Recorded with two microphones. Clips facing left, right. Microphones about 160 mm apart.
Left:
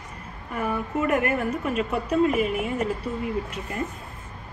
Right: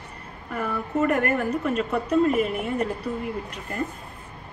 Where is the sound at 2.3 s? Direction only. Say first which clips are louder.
Even; 5° left (ahead or behind).